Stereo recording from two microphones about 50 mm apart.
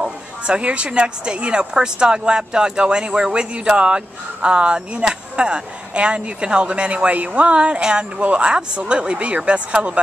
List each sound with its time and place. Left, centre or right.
0.0 s a woman's voice: right